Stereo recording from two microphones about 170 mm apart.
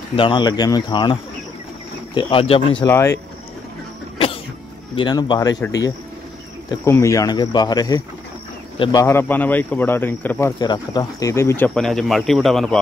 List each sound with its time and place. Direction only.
0.1 s speech: 30° left (ahead or behind)
2.1 s speech: 35° left (ahead or behind)
4.9 s speech: 25° left (ahead or behind)
9.0 s speech: 10° left (ahead or behind)
10.6 s speech: 25° left (ahead or behind); by 12.7 s centre (ahead or behind)